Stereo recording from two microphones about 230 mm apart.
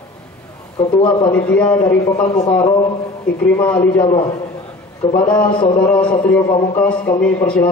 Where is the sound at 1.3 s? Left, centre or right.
Centre.